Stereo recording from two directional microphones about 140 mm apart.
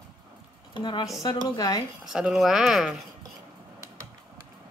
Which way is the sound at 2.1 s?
5° right (ahead or behind).